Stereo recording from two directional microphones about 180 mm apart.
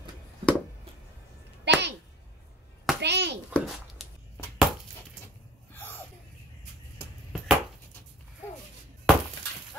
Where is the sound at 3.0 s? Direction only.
70° right (ahead or behind).